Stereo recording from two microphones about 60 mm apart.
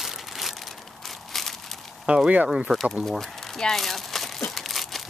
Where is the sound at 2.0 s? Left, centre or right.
Centre.